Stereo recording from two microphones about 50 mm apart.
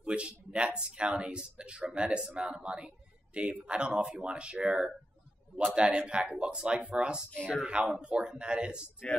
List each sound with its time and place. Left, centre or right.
0.0 s speech: right
7.2 s speech: centre
7.5 s speech: right